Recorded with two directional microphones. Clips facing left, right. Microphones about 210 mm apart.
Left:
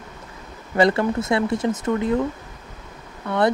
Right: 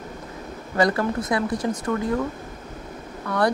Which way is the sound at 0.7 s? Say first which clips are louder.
Left 3 dB; 25° left (ahead or behind).